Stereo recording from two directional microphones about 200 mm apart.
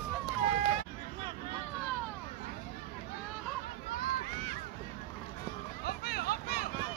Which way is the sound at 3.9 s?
50° left (ahead or behind).